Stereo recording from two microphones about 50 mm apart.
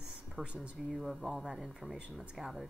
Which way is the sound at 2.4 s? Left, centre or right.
Centre.